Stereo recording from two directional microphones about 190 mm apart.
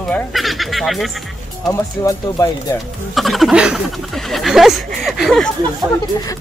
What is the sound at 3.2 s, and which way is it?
Speech, centre (ahead or behind).